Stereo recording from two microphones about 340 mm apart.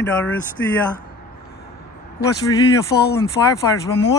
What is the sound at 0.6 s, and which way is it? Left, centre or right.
Speech, left.